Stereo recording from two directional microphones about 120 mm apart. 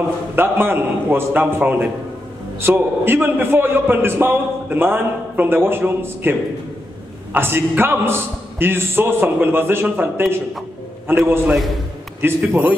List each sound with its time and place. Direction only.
0.4 s a man's voice: 20° right (ahead or behind)
7.3 s a man's voice: 20° right (ahead or behind)